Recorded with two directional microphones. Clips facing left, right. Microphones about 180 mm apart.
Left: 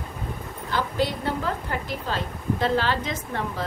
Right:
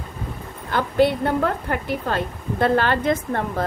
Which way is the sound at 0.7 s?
55° right (ahead or behind).